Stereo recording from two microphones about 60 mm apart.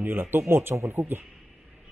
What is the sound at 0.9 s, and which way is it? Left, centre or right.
Speech, right.